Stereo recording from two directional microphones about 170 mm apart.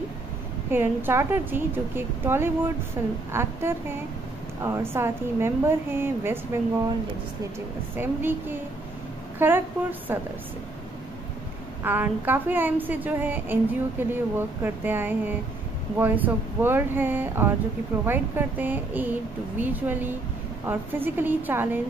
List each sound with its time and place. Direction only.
0.7 s a woman's voice: 10° right (ahead or behind)
7.9 s a woman's voice: 10° right (ahead or behind)
11.8 s a woman's voice: 10° right (ahead or behind)